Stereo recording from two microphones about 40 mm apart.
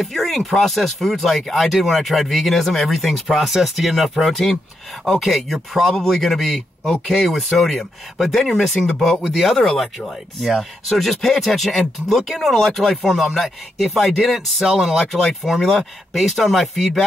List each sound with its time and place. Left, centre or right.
0.0 s a man's voice: centre
9.3 s speech: centre